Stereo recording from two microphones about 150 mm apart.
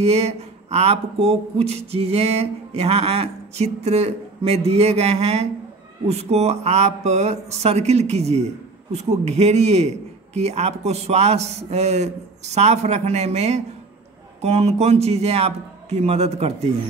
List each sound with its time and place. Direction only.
0.0 s speech: 45° right (ahead or behind)